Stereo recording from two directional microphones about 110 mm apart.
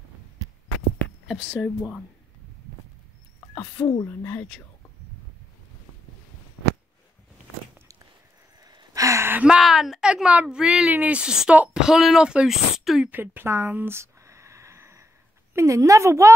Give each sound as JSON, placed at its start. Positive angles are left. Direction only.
{"t": 1.2, "sound": "speech", "side_deg": -5}
{"t": 3.5, "sound": "speech", "side_deg": 20}
{"t": 8.6, "sound": "gasp", "side_deg": -35}
{"t": 9.4, "sound": "a woman's voice", "side_deg": -5}
{"t": 13.1, "sound": "a sound", "side_deg": -20}
{"t": 15.5, "sound": "a woman's voice", "side_deg": -30}